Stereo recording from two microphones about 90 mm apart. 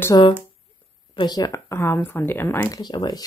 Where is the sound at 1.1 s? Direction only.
50° left (ahead or behind).